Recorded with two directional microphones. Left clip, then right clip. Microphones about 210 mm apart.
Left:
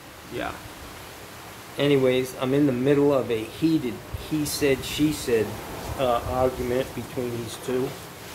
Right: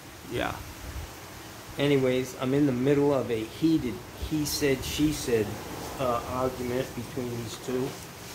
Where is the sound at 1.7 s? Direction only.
Centre (ahead or behind).